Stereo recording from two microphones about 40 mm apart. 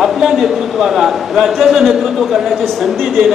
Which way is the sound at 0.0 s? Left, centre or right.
Centre.